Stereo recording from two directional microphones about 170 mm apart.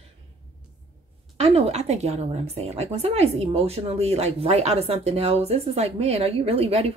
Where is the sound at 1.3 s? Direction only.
40° right (ahead or behind).